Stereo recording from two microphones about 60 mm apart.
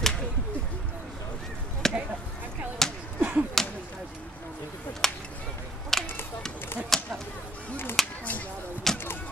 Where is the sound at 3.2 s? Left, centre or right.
Right.